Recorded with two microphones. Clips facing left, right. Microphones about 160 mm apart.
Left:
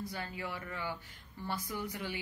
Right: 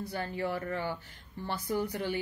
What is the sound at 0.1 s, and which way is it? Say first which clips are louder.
Speech: right 7 dB; 35° right (ahead or behind).